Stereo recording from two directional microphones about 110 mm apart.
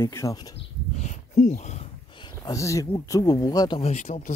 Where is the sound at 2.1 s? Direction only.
45° left (ahead or behind).